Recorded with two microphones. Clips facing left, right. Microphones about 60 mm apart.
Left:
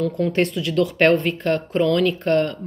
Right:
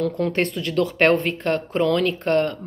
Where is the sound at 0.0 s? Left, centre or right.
Right.